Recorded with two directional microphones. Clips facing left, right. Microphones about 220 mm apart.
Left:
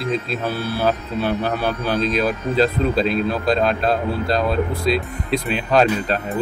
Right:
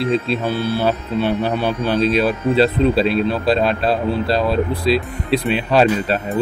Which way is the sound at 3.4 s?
5° right (ahead or behind).